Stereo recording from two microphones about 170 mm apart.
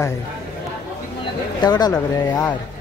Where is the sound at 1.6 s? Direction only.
25° left (ahead or behind).